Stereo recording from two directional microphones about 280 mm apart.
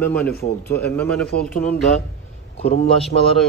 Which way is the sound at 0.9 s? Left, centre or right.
Centre.